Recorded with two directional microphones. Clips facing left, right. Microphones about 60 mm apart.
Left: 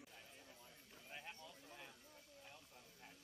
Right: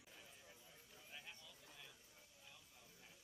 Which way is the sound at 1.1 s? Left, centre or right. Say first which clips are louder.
Left 5 dB; left.